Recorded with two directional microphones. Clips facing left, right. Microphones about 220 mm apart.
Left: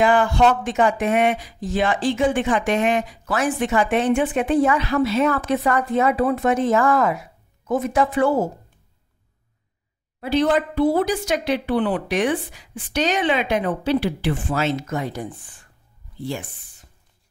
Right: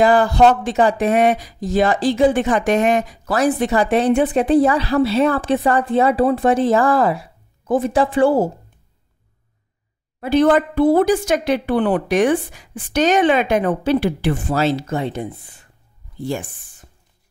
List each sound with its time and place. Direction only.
0.0 s speech: 35° right (ahead or behind)
10.2 s speech: 50° right (ahead or behind)
14.5 s speech: 35° right (ahead or behind)
16.2 s speech: 45° right (ahead or behind)